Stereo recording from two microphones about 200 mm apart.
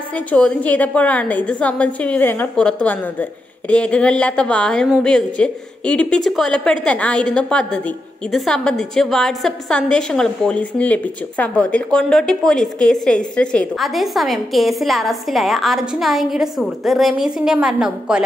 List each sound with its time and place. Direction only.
0.3 s a woman's voice: 5° left (ahead or behind)